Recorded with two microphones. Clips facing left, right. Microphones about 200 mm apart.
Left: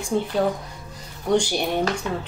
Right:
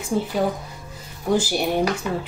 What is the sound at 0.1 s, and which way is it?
Speech, 5° right (ahead or behind).